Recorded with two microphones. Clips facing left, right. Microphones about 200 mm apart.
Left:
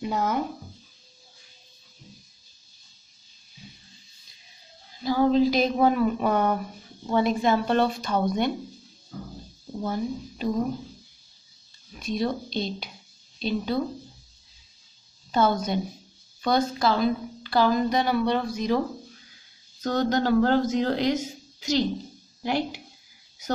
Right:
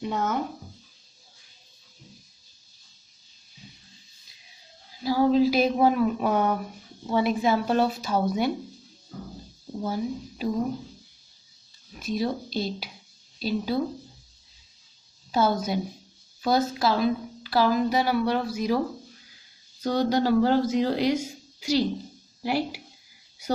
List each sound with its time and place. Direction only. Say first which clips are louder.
0.0 s speech: left 1 dB; centre (ahead or behind)
4.9 s speech: even; 5° right (ahead or behind)
9.8 s speech: even; 5° right (ahead or behind)
12.0 s speech: even; 5° right (ahead or behind)
15.3 s speech: left 1 dB; 5° right (ahead or behind)
19.8 s speech: right 1 dB; 10° right (ahead or behind)